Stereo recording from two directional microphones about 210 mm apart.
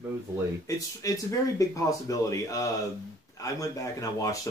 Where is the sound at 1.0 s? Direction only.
15° left (ahead or behind).